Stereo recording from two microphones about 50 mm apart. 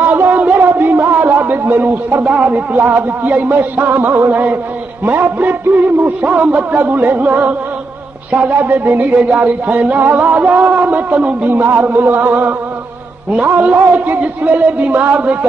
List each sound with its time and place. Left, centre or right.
0.0 s a sound: right
2.4 s music: right
11.5 s music: right
13.6 s music: right